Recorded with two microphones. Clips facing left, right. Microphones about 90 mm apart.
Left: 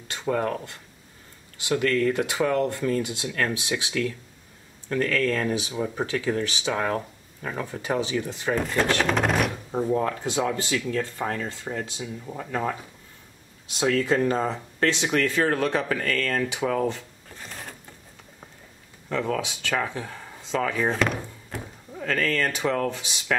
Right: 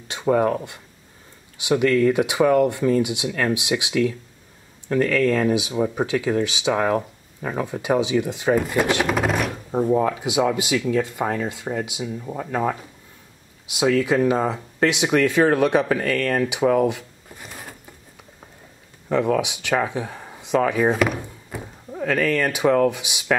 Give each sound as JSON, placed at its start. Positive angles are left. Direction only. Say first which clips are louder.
{"t": 0.1, "sound": "speech", "louder": "right 7 dB", "side_deg": -15}
{"t": 9.1, "sound": "a sound", "louder": "right 1 dB", "side_deg": 0}
{"t": 9.7, "sound": "speech", "louder": "right 9 dB", "side_deg": -15}
{"t": 13.7, "sound": "speech", "louder": "right 4 dB", "side_deg": -10}
{"t": 19.0, "sound": "speech", "louder": "right 6 dB", "side_deg": -15}